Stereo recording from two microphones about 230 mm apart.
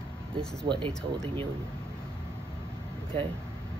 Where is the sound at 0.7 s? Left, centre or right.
Centre.